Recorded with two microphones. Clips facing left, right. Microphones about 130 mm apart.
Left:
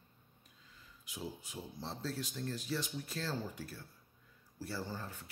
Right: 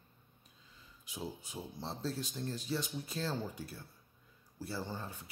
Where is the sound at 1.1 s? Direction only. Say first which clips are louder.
Right 2 dB; 25° right (ahead or behind).